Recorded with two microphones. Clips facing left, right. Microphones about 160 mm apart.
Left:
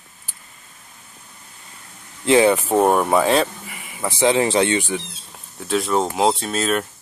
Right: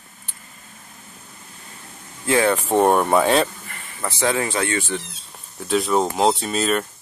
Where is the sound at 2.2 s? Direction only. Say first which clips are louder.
Left 4 dB; 20° left (ahead or behind).